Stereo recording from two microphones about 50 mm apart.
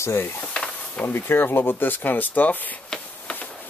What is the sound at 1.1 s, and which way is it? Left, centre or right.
Speech, left.